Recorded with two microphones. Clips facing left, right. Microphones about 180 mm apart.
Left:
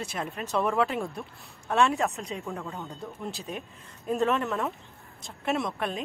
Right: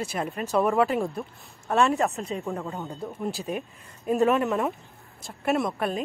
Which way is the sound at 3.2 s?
Centre (ahead or behind).